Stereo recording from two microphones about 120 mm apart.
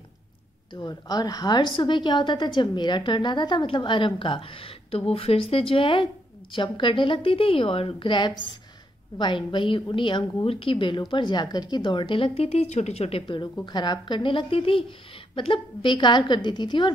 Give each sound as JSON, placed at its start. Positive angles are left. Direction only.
{"t": 0.7, "sound": "a woman's voice", "side_deg": 35}
{"t": 12.4, "sound": "speech", "side_deg": 65}
{"t": 13.7, "sound": "a woman's voice", "side_deg": 40}